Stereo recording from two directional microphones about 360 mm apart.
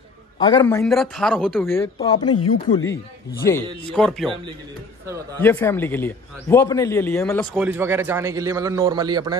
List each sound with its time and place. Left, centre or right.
0.4 s a man's voice: centre
0.7 s a man's voice: centre
2.3 s speech: left
3.4 s a man's voice: centre
5.4 s a man's voice: centre
7.6 s a man's voice: centre